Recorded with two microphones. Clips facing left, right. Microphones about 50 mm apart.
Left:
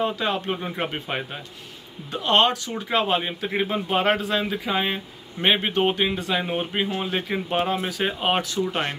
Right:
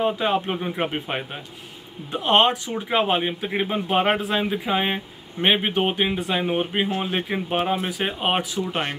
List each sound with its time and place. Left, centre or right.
0.0 s a man's voice: centre